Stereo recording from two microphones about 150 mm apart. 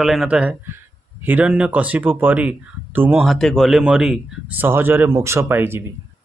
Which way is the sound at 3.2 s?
Centre (ahead or behind).